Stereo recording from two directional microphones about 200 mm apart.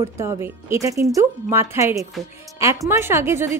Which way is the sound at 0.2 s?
15° right (ahead or behind).